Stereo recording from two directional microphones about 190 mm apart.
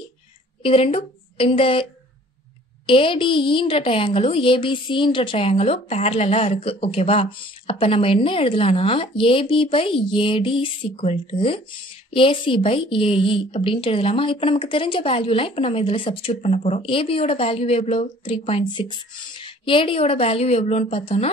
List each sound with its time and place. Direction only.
0.6 s a woman's voice: 30° left (ahead or behind)
2.9 s a woman's voice: 25° left (ahead or behind)